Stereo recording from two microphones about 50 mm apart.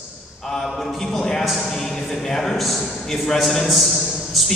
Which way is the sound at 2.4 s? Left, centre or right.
Centre.